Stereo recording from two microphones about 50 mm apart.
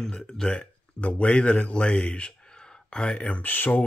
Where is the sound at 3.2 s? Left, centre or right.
Left.